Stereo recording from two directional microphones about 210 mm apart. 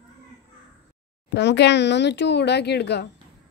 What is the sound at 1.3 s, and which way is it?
A woman's voice, 55° left (ahead or behind).